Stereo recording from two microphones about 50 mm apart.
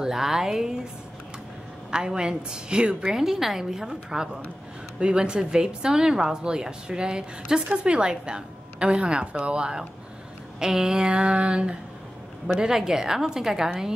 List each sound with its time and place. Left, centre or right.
0.0 s a woman's voice: centre
1.9 s a woman's voice: centre